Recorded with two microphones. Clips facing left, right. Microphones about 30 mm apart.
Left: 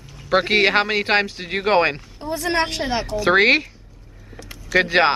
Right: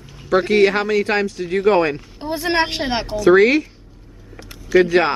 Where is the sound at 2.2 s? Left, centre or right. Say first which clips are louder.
Right 2 dB; right.